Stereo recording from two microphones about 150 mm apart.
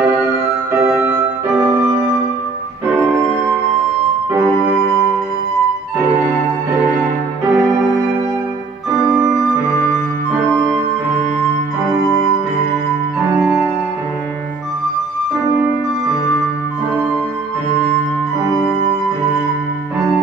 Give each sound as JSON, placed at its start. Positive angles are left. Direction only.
{"t": 2.9, "sound": "music", "side_deg": -10}
{"t": 4.3, "sound": "music", "side_deg": -15}
{"t": 7.5, "sound": "music", "side_deg": -20}